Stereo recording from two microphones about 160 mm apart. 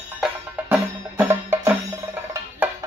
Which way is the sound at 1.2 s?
15° right (ahead or behind).